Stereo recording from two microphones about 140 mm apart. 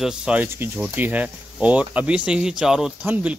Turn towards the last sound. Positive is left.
turn(degrees=-10)  # may be behind; listen again after turning